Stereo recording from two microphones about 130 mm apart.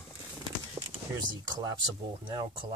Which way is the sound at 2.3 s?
30° right (ahead or behind).